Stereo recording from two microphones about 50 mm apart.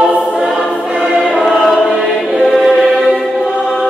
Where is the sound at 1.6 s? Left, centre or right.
Centre.